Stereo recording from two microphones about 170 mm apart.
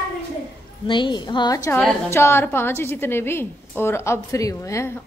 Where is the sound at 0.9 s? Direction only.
25° left (ahead or behind).